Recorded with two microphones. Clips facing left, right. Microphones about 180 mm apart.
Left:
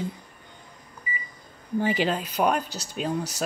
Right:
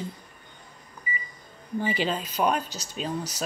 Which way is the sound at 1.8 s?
15° left (ahead or behind).